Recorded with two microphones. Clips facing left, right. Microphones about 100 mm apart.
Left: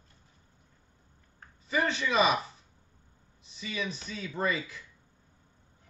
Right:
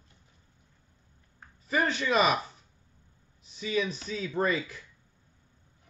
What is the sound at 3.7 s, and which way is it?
Speech, 40° right (ahead or behind).